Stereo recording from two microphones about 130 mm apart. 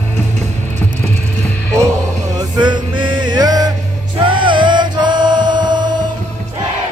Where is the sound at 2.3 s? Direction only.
35° right (ahead or behind).